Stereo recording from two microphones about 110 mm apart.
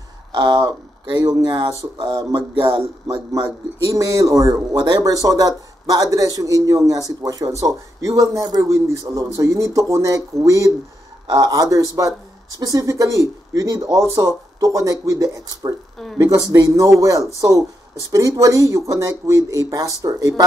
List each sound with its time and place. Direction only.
0.3 s a man's voice: 40° right (ahead or behind)
3.8 s a man's voice: 30° right (ahead or behind)